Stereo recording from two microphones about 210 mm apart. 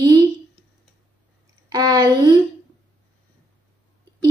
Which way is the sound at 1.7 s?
15° right (ahead or behind).